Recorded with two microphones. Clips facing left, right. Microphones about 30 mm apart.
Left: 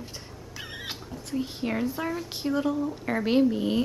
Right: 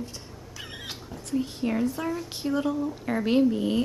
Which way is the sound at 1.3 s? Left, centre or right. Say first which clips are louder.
Right 2 dB; centre.